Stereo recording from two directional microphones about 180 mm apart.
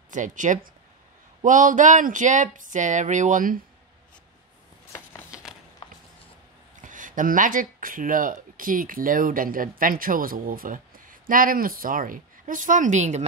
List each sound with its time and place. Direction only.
0.1 s speech: 45° right (ahead or behind)
6.8 s speech: 45° right (ahead or behind)